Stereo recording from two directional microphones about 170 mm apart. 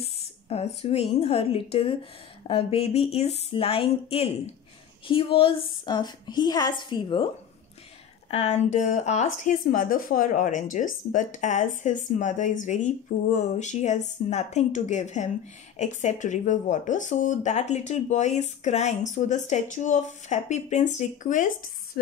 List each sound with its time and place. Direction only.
0.0 s a woman's voice: 35° left (ahead or behind)
8.3 s speech: 40° left (ahead or behind)
22.0 s speech: 65° left (ahead or behind)